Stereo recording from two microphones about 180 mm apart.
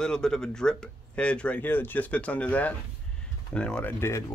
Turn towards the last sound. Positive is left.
turn(degrees=15)  # may be behind; listen again after turning